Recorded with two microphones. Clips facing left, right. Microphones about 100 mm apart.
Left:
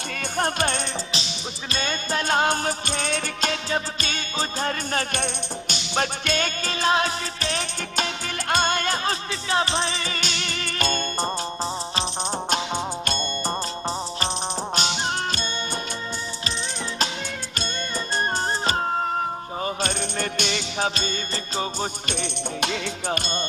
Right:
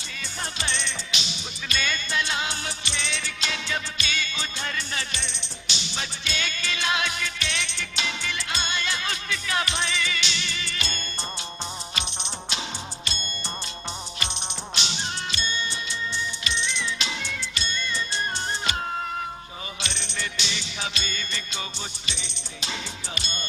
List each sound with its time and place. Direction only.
0.2 s music: 55° left (ahead or behind)
1.1 s music: 35° left (ahead or behind)
14.8 s music: 45° left (ahead or behind)
16.4 s music: 40° left (ahead or behind)
19.6 s music: 45° left (ahead or behind)
22.0 s music: 55° left (ahead or behind)